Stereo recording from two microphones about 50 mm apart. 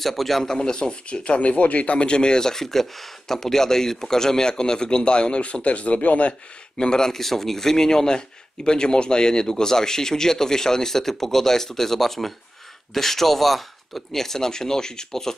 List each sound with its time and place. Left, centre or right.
0.0 s a man's voice: centre
0.6 s speech: centre
6.8 s speech: centre